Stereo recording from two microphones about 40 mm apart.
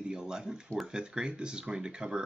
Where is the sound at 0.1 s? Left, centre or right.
Centre.